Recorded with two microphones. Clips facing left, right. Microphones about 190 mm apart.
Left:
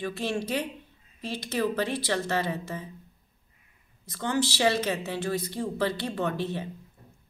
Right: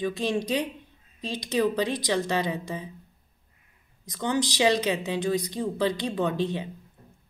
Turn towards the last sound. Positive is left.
turn(degrees=-15)  # may be behind; listen again after turning